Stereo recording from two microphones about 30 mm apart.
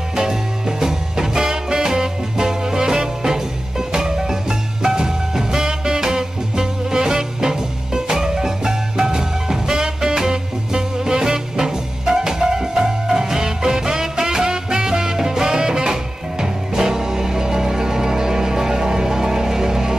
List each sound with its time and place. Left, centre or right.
0.1 s music: right